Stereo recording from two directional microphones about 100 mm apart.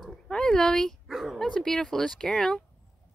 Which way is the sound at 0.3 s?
10° left (ahead or behind).